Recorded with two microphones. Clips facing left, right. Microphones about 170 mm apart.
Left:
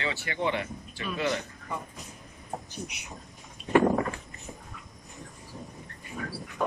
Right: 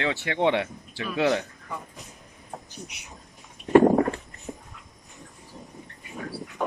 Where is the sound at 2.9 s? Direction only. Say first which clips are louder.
Left 2 dB; centre (ahead or behind).